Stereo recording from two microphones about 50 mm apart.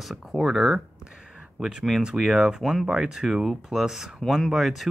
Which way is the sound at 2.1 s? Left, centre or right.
Centre.